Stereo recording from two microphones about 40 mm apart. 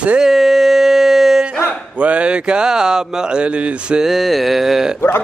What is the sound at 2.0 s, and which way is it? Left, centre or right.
Speech, right.